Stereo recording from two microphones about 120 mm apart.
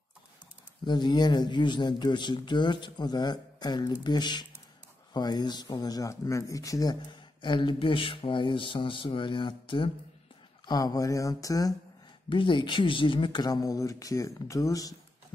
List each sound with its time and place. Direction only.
0.8 s speech: 40° left (ahead or behind)
7.4 s speech: 45° left (ahead or behind)
12.3 s speech: 45° left (ahead or behind)